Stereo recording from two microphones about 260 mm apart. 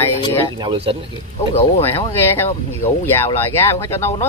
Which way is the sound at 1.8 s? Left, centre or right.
Centre.